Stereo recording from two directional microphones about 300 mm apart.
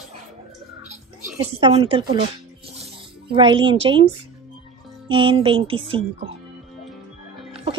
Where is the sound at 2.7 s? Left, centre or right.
Centre.